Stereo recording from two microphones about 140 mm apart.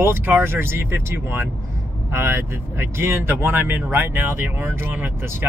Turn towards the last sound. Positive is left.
turn(degrees=-20)  # may be behind; listen again after turning